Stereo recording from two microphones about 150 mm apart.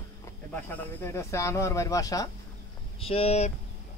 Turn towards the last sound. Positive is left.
turn(degrees=45)  # may be behind; listen again after turning